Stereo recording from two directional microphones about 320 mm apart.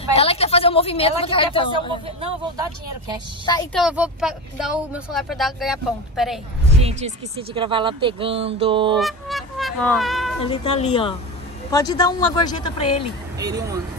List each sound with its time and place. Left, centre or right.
0.1 s a woman's voice: centre
3.4 s speech: centre
3.8 s speech: centre
6.7 s speech: centre
8.9 s speech: centre
10.4 s speech: centre
13.4 s speech: centre